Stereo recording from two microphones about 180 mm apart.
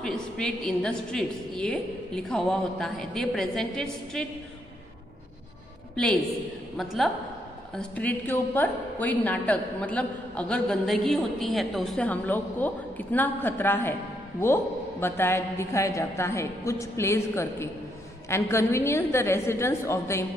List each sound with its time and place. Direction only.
0.0 s a woman's voice: 5° left (ahead or behind)
6.8 s a woman's voice: centre (ahead or behind)